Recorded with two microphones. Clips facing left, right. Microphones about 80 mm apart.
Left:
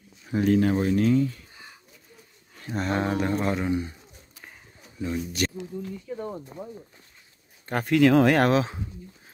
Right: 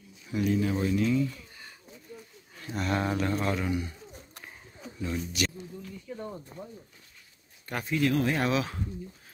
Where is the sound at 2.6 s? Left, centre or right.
Left.